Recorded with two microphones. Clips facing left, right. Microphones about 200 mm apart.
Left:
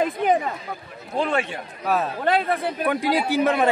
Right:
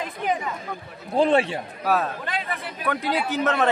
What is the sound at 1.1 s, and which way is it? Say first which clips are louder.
Speech: right 4 dB; 30° right (ahead or behind).